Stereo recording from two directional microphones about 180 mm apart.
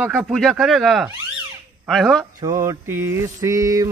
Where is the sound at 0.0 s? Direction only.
Centre (ahead or behind).